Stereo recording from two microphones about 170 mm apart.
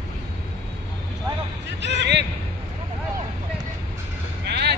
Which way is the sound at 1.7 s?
90° right.